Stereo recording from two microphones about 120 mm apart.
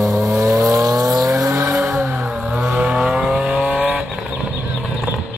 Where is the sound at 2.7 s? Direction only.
10° right (ahead or behind).